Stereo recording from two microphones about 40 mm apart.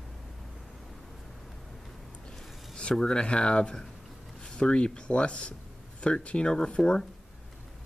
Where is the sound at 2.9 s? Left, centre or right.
Left.